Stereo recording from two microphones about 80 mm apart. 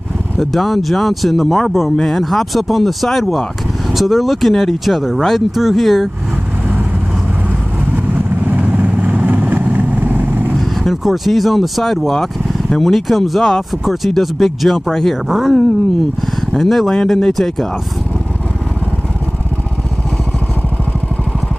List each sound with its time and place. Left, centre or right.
0.4 s speech: centre
8.5 s vehicle: centre
10.8 s speech: centre
16.5 s speech: centre